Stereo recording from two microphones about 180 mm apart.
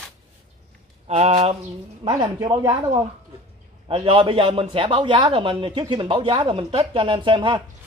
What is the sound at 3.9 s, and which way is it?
A man's voice, 30° right (ahead or behind).